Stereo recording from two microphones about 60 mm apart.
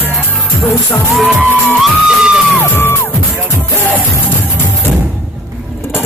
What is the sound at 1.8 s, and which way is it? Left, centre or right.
Music, centre.